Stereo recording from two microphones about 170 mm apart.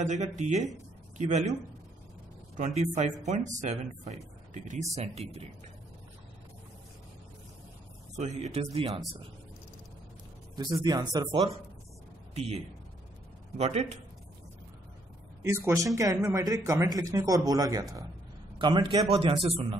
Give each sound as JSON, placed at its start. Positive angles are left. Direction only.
{"t": 0.0, "sound": "speech", "side_deg": -45}
{"t": 2.5, "sound": "speech", "side_deg": -45}
{"t": 8.2, "sound": "speech", "side_deg": -40}
{"t": 10.5, "sound": "a man's voice", "side_deg": -25}
{"t": 12.4, "sound": "speech", "side_deg": -40}
{"t": 15.4, "sound": "a man's voice", "side_deg": -15}